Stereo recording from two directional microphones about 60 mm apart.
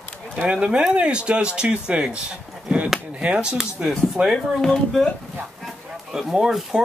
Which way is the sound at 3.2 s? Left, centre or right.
Centre.